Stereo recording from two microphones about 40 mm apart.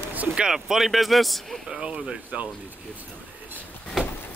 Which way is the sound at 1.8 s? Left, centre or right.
Right.